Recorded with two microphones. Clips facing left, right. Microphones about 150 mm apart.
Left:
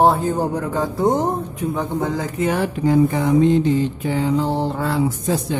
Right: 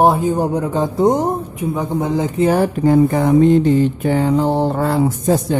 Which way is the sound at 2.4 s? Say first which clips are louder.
Right 5 dB; 40° right (ahead or behind).